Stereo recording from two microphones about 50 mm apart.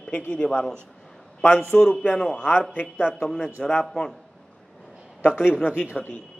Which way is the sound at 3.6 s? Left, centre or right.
Left.